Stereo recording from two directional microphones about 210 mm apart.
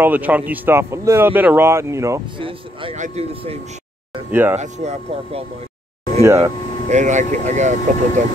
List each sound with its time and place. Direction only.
0.0 s speech: 10° right (ahead or behind)
2.4 s speech: 25° right (ahead or behind)
4.3 s speech: 10° right (ahead or behind)
4.6 s speech: 30° right (ahead or behind)
6.2 s speech: 15° right (ahead or behind)
6.9 s speech: 35° right (ahead or behind)